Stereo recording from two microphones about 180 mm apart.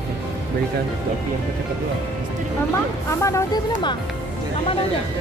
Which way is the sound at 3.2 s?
15° left (ahead or behind).